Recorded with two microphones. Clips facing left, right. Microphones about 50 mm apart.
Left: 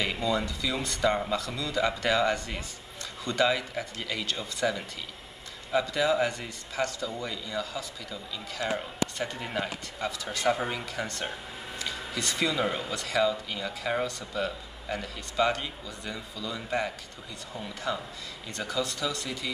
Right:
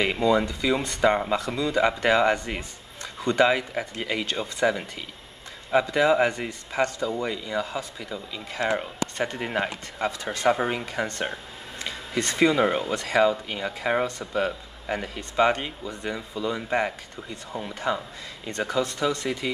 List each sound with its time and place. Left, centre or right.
0.0 s speech: right
10.9 s speech: right
11.8 s a sound: right
12.5 s speech: right
17.5 s speech: right